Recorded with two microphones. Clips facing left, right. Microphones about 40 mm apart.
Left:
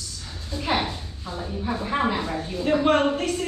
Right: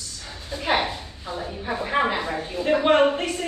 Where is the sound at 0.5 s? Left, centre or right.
Centre.